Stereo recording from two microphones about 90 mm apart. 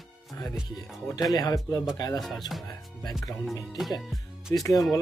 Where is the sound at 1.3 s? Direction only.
45° left (ahead or behind).